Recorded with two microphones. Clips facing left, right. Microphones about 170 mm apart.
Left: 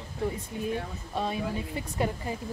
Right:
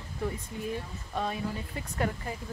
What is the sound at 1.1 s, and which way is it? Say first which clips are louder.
Speech: left 2 dB; 20° left (ahead or behind).